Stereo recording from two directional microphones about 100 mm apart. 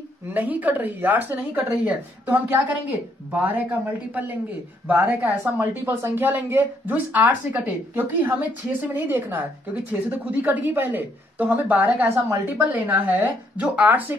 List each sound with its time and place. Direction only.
0.3 s a woman's voice: 15° right (ahead or behind)